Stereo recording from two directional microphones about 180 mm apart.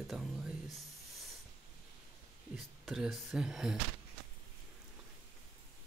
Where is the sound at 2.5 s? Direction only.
Centre (ahead or behind).